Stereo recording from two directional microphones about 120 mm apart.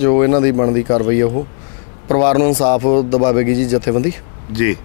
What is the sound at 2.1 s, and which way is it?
Speech, 20° left (ahead or behind).